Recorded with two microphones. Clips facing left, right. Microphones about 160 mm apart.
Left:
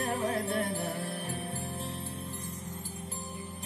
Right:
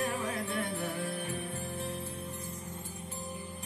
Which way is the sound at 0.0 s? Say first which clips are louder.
Left 3 dB; 30° left (ahead or behind).